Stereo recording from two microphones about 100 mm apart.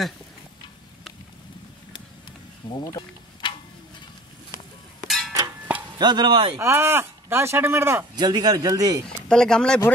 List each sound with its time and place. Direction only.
2.7 s a sound: 45° left (ahead or behind)
5.0 s a sound: centre (ahead or behind)
5.9 s speech: 45° right (ahead or behind)
6.6 s speech: 25° right (ahead or behind)
8.2 s speech: 45° right (ahead or behind)
9.0 s speech: 5° left (ahead or behind)